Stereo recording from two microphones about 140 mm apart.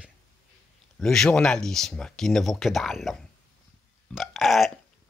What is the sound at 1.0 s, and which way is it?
Speech, 5° left (ahead or behind).